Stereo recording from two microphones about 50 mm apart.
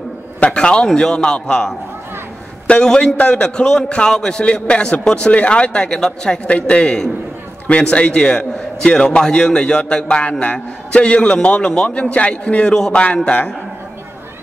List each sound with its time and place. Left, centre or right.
0.4 s a man's voice: centre
12.7 s a man's voice: centre
13.0 s a man's voice: left